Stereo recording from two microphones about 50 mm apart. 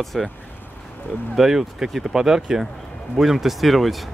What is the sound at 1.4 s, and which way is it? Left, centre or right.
Speech, centre.